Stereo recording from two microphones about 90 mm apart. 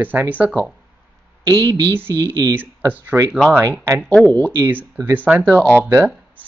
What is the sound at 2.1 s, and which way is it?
Speech, 35° right (ahead or behind).